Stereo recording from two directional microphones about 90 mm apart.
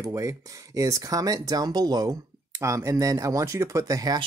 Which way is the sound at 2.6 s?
35° right (ahead or behind).